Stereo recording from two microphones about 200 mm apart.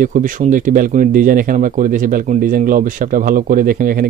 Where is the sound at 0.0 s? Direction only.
40° right (ahead or behind).